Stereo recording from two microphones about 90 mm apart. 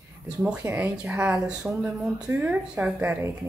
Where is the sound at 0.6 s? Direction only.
20° right (ahead or behind).